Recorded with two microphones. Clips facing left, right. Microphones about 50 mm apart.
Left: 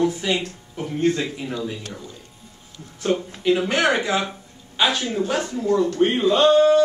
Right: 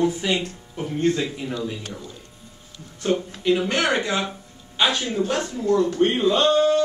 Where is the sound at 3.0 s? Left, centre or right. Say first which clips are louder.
Even; centre.